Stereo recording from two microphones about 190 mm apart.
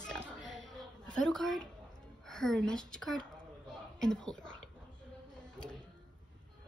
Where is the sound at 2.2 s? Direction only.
Centre (ahead or behind).